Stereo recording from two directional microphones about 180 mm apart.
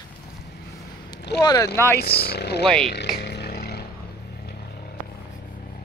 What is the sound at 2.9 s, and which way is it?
Vehicle, 70° left (ahead or behind).